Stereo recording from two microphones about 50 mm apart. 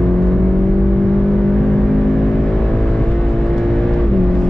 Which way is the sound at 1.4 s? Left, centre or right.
Centre.